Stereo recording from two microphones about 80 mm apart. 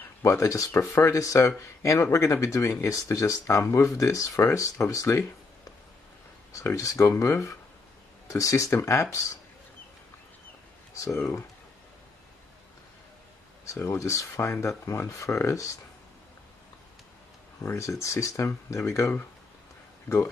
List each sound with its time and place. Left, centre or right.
0.2 s speech: left
6.6 s speech: left
13.7 s speech: left
17.6 s speech: left